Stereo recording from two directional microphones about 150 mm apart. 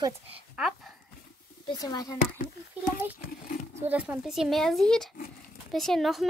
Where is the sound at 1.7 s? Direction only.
25° left (ahead or behind).